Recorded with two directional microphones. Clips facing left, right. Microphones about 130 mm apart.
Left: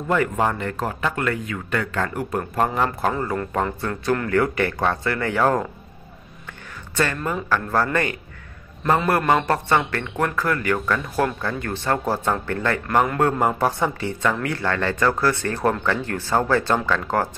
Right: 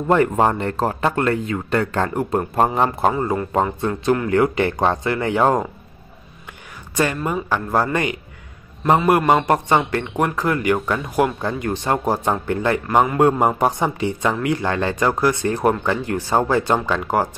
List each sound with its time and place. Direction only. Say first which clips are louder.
0.1 s speech: right 5 dB; 35° right (ahead or behind)
7.4 s speech: even; 15° right (ahead or behind)